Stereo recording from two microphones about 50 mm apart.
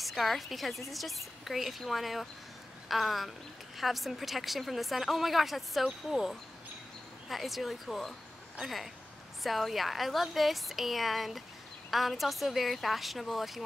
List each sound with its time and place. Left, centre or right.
0.0 s speech: centre